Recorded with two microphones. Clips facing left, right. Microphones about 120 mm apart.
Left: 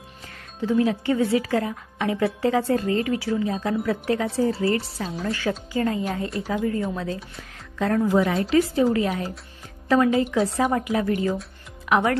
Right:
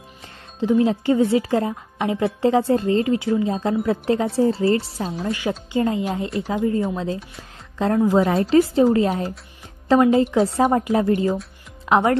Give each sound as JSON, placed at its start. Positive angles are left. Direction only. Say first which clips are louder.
{"t": 0.6, "sound": "a woman's voice", "louder": "right 3 dB", "side_deg": -25}
{"t": 5.2, "sound": "a woman's voice", "louder": "even", "side_deg": -15}